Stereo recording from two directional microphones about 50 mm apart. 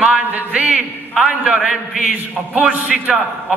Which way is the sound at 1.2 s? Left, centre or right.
Centre.